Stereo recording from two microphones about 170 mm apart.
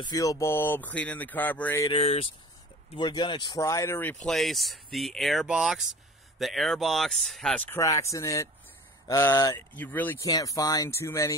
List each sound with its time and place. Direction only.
0.0 s speech: 20° left (ahead or behind)
1.9 s speech: 35° left (ahead or behind); by 11.3 s 15° left (ahead or behind)